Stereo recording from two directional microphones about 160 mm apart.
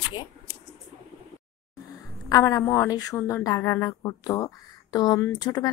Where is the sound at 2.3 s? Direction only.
20° left (ahead or behind).